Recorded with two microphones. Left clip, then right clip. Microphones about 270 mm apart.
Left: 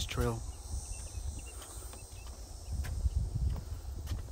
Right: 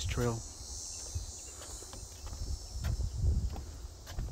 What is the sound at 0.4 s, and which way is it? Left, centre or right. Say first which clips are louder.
Cricket: right 5 dB; right.